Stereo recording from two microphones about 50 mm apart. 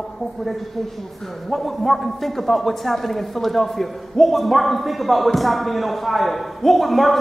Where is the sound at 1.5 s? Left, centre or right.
Centre.